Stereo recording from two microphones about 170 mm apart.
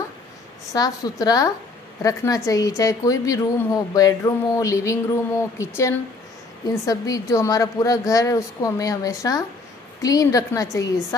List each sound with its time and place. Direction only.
0.7 s a woman's voice: 20° left (ahead or behind)